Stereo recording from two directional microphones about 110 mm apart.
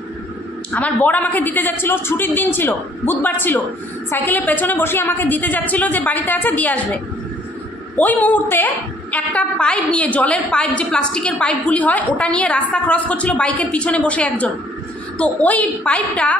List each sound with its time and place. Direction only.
0.7 s a woman's voice: 15° left (ahead or behind)
7.9 s a woman's voice: 15° left (ahead or behind)